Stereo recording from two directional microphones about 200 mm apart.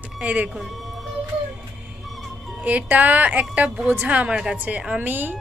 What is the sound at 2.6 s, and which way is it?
A woman's voice, 5° right (ahead or behind).